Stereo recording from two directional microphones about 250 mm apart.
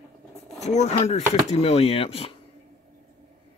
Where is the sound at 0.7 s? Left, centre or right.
Left.